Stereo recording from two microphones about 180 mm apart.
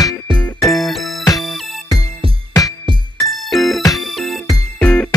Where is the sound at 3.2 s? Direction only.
Centre (ahead or behind).